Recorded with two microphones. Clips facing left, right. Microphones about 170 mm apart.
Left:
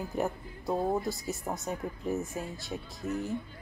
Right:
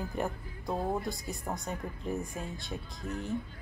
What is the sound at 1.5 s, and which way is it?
Speech, 10° left (ahead or behind).